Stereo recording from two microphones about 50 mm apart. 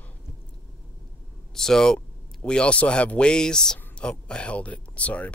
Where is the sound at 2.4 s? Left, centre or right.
Left.